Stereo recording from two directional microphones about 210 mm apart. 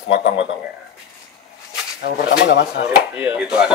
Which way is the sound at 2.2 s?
55° left (ahead or behind).